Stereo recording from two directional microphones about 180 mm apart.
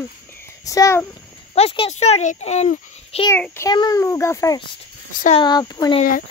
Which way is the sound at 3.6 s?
20° left (ahead or behind).